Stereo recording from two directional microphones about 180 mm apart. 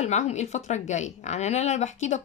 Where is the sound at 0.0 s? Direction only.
40° left (ahead or behind).